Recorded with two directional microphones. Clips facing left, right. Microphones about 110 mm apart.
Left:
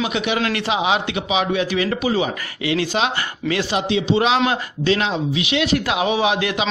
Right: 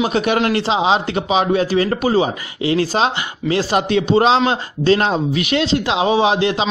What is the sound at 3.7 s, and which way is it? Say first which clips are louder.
Speech: right 4 dB; 50° right (ahead or behind).